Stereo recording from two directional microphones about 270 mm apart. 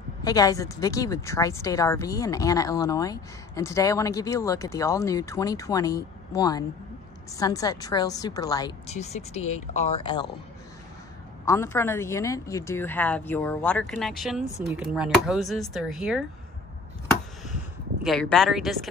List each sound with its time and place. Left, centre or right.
0.2 s speech: centre
11.4 s speech: centre
18.0 s speech: centre